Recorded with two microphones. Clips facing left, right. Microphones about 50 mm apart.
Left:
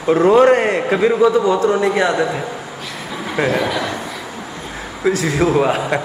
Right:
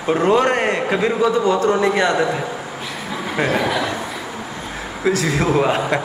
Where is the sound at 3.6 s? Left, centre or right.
Centre.